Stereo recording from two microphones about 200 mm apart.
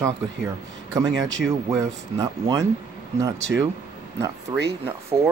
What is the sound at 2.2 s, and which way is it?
Speech, 20° right (ahead or behind).